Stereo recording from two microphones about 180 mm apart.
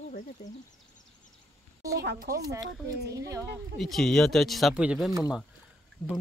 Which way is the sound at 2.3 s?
15° right (ahead or behind).